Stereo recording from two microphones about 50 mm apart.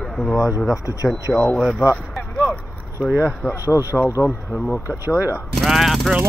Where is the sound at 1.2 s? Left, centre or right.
Left.